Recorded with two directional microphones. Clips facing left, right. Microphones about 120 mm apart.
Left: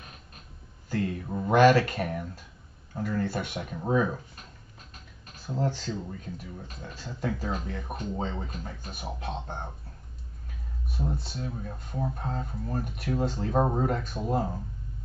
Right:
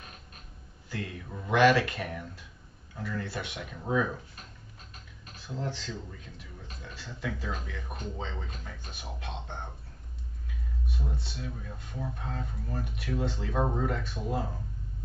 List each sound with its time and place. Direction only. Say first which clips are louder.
0.8 s speech: left 8 dB; 40° left (ahead or behind)
5.4 s speech: left 6 dB; 45° left (ahead or behind)
10.9 s speech: left 7 dB; 40° left (ahead or behind)